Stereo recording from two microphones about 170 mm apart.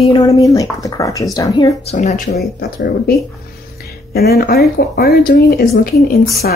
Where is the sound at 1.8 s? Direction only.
40° left (ahead or behind).